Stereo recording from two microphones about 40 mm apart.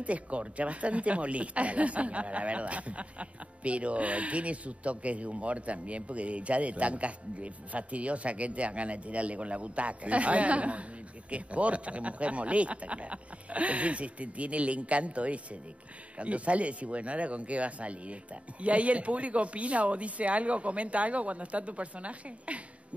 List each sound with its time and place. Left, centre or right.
0.0 s speech: right